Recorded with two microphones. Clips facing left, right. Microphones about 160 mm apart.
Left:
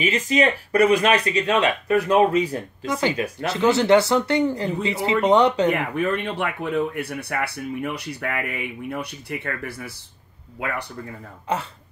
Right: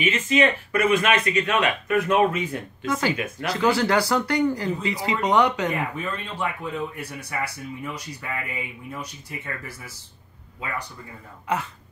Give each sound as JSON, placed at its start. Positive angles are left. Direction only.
{"t": 0.0, "sound": "speech", "side_deg": 35}
{"t": 5.7, "sound": "speech", "side_deg": 70}